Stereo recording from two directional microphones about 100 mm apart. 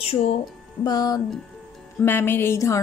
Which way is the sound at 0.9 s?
40° left (ahead or behind).